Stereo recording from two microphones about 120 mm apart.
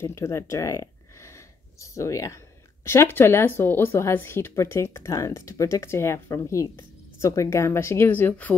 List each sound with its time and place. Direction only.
0.0 s speech: 25° left (ahead or behind)